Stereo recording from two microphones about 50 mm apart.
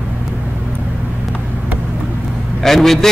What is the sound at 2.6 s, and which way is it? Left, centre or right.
Speech, centre.